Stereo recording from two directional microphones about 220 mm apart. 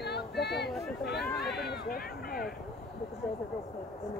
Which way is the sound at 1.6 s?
45° left (ahead or behind).